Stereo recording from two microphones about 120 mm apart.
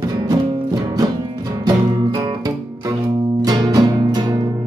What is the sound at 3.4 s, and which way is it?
Music, 35° right (ahead or behind).